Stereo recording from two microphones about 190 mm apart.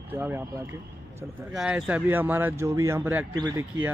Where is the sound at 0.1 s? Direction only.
10° right (ahead or behind).